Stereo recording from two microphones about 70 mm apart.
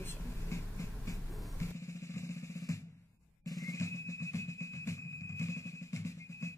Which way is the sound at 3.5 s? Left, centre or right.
Left.